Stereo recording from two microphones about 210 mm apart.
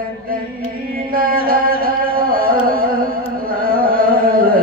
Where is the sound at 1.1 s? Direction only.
45° right (ahead or behind).